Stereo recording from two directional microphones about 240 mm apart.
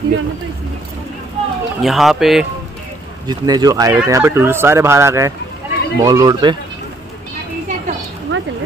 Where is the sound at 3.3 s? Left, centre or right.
Centre.